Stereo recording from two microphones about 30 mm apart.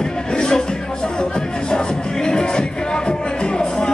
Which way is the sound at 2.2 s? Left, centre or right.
Left.